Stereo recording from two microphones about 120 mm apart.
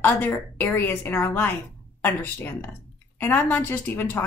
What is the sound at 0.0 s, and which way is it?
A woman's voice, 15° left (ahead or behind).